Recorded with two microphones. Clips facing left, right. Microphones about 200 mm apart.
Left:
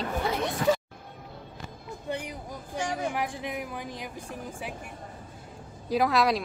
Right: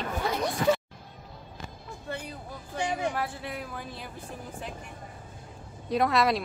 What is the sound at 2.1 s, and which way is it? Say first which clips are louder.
A woman's voice: left 3 dB; 15° left (ahead or behind).